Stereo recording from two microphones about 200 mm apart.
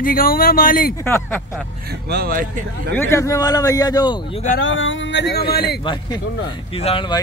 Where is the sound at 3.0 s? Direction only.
15° left (ahead or behind).